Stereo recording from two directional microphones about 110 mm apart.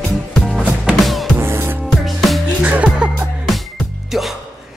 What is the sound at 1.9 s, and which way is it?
Music, centre (ahead or behind).